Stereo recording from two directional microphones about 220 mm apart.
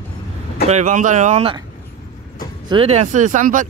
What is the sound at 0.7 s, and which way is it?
Speech, 35° right (ahead or behind).